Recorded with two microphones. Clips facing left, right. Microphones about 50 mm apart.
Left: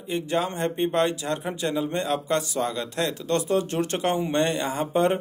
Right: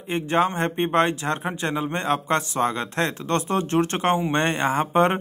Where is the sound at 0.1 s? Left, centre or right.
Right.